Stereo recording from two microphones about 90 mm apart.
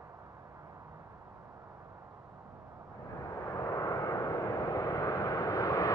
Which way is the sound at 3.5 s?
35° left (ahead or behind).